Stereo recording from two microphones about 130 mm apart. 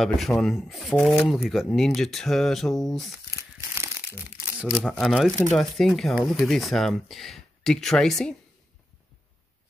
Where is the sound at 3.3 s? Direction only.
15° right (ahead or behind).